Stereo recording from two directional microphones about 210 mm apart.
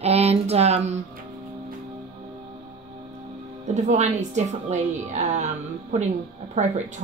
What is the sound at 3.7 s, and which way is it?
A woman's voice, 35° right (ahead or behind).